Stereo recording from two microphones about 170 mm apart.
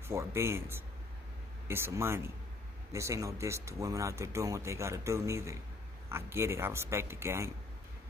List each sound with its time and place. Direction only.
0.1 s speech: 15° right (ahead or behind)